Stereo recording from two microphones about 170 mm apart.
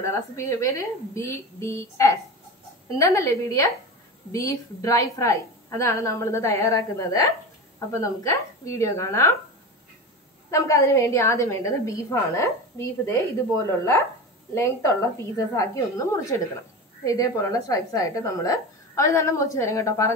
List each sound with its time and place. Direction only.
0.0 s a woman's voice: 15° left (ahead or behind)
10.5 s a woman's voice: 15° left (ahead or behind)